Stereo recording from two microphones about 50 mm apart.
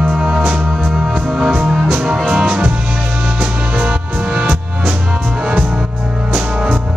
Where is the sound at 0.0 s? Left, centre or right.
Centre.